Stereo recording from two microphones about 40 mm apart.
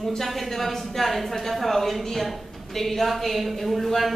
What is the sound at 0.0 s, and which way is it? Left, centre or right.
Speech, centre.